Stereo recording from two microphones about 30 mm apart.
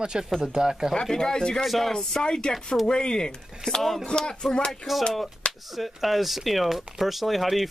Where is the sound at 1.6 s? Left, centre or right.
Centre.